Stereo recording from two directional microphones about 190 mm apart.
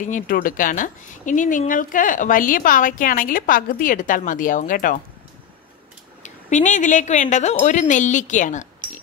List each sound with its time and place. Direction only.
0.0 s a woman's voice: 45° left (ahead or behind)
6.2 s a woman's voice: 40° left (ahead or behind)